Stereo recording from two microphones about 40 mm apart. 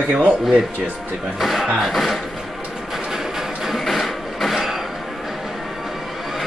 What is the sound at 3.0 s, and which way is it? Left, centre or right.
Music, centre.